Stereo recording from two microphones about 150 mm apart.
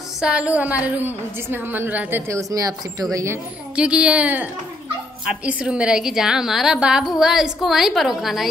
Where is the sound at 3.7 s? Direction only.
5° right (ahead or behind).